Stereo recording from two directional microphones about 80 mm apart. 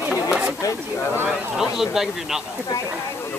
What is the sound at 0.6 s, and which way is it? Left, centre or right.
Speech, left.